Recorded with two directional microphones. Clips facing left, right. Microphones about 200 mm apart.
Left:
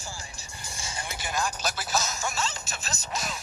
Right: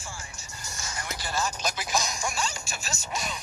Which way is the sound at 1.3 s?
15° left (ahead or behind).